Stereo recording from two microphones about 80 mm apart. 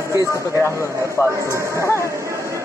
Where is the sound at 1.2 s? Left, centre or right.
Right.